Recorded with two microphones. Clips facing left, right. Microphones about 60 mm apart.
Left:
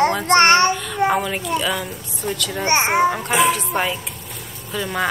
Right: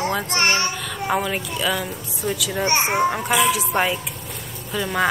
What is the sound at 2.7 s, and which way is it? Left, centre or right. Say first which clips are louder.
Speech: left 4 dB; left.